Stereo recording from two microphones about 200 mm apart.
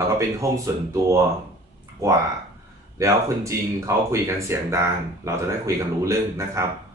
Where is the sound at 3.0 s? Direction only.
15° right (ahead or behind).